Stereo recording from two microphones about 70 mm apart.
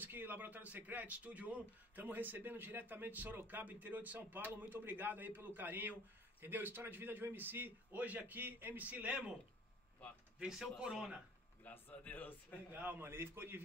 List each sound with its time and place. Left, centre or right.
0.0 s speech: right
10.4 s speech: centre
11.6 s a man's voice: left
12.7 s a man's voice: right